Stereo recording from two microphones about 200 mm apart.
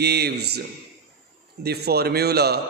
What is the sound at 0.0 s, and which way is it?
A man's voice, 55° right (ahead or behind).